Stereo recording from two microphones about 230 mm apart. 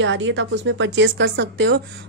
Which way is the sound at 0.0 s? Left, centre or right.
Right.